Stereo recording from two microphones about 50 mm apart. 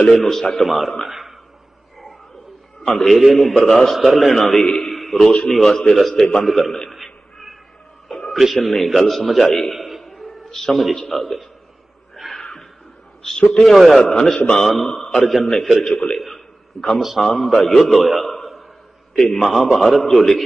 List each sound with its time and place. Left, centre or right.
0.1 s a man's voice: centre
1.0 s a sound: centre
2.8 s a man's voice: centre
6.9 s a sound: centre
8.3 s a man's voice: centre
12.2 s a sound: centre
13.2 s a man's voice: centre
13.7 s a man's voice: centre
14.0 s a man's voice: centre